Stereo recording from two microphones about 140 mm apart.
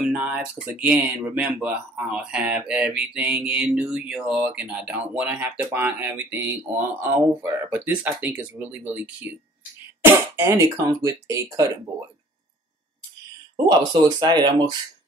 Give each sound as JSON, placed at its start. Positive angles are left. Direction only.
{"t": 0.0, "sound": "speech", "side_deg": -10}
{"t": 13.7, "sound": "speech", "side_deg": -30}